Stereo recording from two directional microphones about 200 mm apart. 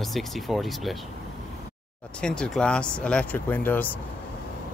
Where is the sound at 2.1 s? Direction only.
5° left (ahead or behind).